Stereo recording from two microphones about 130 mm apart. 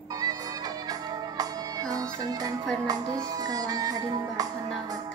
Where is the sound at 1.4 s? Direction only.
30° right (ahead or behind).